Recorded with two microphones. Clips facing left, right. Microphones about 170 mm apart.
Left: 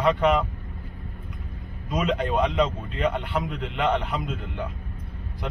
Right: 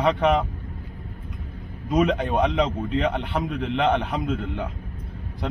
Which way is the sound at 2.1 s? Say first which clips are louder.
Right 1 dB; 20° right (ahead or behind).